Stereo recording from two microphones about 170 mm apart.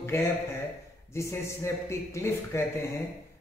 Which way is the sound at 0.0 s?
15° left (ahead or behind).